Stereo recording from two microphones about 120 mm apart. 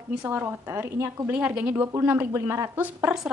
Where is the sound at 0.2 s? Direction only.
20° right (ahead or behind).